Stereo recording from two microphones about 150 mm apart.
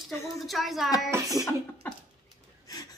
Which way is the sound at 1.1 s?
20° right (ahead or behind).